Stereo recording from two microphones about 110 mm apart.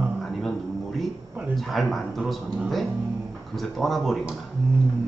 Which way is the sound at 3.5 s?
Centre (ahead or behind).